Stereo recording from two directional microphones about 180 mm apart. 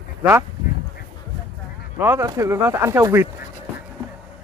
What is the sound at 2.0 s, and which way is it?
Speech, 10° right (ahead or behind).